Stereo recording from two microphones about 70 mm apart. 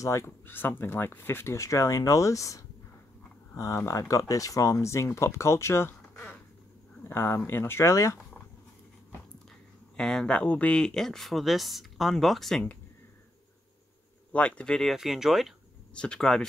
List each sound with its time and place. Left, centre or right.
0.0 s speech: left
0.5 s speech: left
9.9 s speech: centre
10.8 s speech: centre
14.3 s speech: centre
14.8 s speech: centre
15.9 s speech: centre